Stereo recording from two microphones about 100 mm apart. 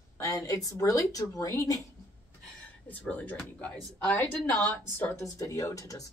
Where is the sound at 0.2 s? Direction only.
35° left (ahead or behind).